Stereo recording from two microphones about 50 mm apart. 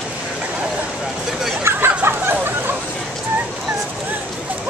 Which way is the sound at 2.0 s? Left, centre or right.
Right.